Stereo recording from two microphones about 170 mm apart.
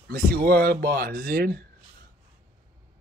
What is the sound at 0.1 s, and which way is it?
A man's voice, 65° right (ahead or behind).